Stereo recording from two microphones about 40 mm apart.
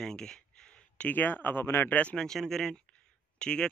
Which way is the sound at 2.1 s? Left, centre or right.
Centre.